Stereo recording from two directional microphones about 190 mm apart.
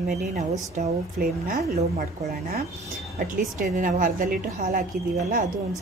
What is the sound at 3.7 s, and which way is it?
Speech, 45° right (ahead or behind).